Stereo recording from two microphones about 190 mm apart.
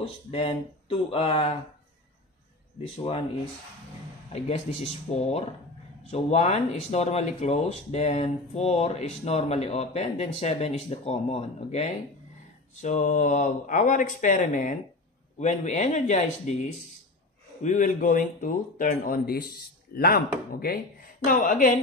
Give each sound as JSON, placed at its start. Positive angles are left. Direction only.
{"t": 0.0, "sound": "speech", "side_deg": 30}
{"t": 2.8, "sound": "speech", "side_deg": 30}
{"t": 5.1, "sound": "speech", "side_deg": 35}
{"t": 17.6, "sound": "speech", "side_deg": 40}